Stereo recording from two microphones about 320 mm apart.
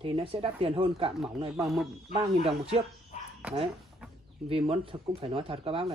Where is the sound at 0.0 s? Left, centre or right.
Centre.